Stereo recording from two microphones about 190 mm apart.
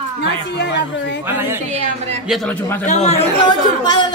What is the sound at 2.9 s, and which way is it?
Speech, 35° left (ahead or behind).